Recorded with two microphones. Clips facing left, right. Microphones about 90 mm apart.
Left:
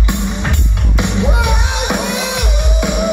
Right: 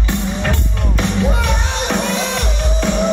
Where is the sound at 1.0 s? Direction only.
15° left (ahead or behind).